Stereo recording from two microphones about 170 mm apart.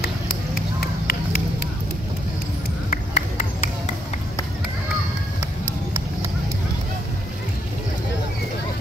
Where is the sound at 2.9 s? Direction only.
50° left (ahead or behind).